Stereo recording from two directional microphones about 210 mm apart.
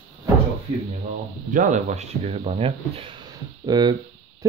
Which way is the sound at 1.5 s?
35° right (ahead or behind).